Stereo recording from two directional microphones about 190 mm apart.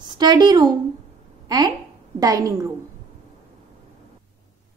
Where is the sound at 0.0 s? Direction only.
20° right (ahead or behind).